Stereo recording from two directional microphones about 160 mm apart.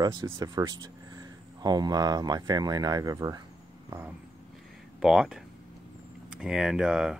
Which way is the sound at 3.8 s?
20° right (ahead or behind).